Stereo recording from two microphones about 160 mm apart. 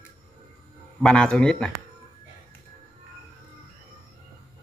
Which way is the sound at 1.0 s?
5° left (ahead or behind).